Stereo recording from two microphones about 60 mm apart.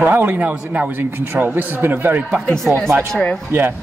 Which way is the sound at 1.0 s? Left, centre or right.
Right.